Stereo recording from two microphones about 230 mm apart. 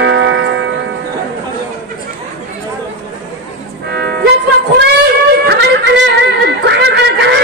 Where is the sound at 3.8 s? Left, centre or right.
Right.